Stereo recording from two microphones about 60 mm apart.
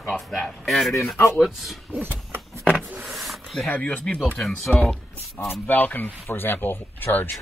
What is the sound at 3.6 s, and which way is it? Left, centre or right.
Speech, left.